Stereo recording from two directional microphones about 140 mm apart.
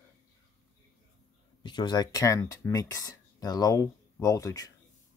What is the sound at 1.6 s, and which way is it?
Speech, 35° left (ahead or behind).